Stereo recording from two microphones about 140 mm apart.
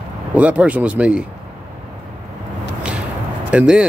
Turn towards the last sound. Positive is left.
turn(degrees=-10)  # may be behind; listen again after turning